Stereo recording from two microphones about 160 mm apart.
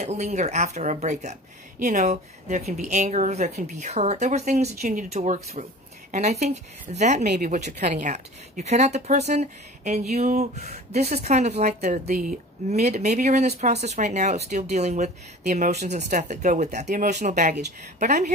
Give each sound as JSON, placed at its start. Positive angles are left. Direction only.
{"t": 0.0, "sound": "a woman's voice", "side_deg": -45}